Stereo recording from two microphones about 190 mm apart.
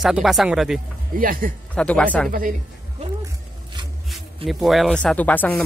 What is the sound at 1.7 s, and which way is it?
Speech, 5° left (ahead or behind).